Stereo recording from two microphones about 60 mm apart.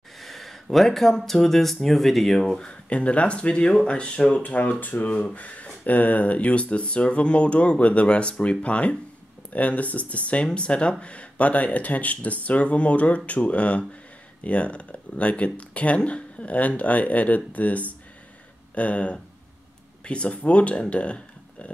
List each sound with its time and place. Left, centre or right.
0.2 s speech: centre
2.9 s speech: left
20.8 s a sound: centre